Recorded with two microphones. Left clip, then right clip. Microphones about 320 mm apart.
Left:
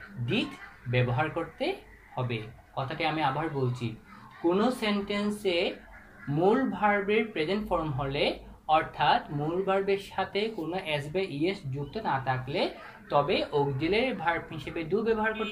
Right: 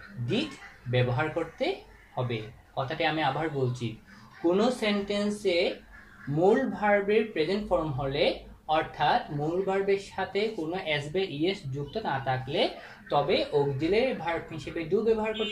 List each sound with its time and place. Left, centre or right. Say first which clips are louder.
0.9 s speech: right 1 dB; centre
4.5 s speech: right 1 dB; centre